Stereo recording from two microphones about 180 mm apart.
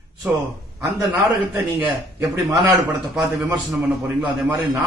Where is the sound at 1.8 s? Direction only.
10° right (ahead or behind).